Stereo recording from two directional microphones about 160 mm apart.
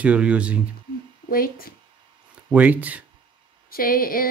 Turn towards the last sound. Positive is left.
turn(degrees=65)  # may be behind; listen again after turning